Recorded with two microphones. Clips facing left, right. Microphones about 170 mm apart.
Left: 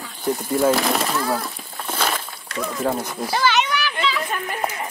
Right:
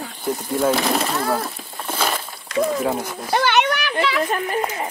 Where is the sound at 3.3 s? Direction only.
60° right (ahead or behind).